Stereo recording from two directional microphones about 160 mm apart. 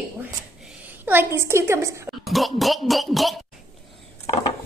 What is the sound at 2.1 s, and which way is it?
Speech, centre (ahead or behind).